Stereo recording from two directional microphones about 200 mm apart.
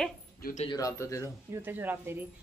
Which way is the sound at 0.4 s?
45° left (ahead or behind).